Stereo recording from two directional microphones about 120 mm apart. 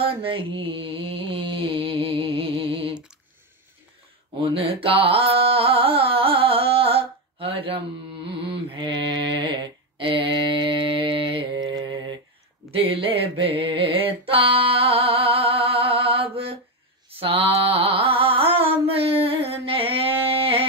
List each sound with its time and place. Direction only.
0.0 s mantra: 50° right (ahead or behind)
4.4 s carnatic music: 50° right (ahead or behind)
8.3 s mantra: 50° right (ahead or behind)
12.7 s mantra: 50° right (ahead or behind)